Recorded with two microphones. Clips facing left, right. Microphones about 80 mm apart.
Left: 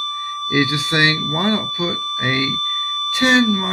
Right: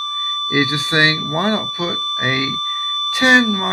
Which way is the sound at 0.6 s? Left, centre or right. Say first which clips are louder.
Right 1 dB; right.